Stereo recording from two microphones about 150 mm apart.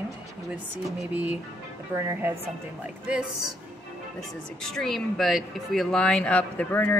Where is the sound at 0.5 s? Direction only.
10° right (ahead or behind).